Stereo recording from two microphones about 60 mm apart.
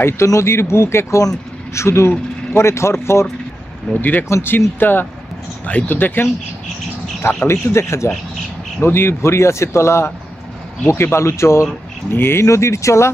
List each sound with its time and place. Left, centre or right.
0.0 s speech: left
3.9 s speech: left
4.3 s speech: left
7.4 s speech: left